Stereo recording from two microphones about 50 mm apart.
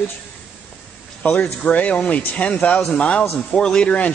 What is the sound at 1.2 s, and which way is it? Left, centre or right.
A man's voice, left.